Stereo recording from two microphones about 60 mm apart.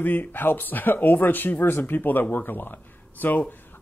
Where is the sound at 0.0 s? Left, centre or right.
Left.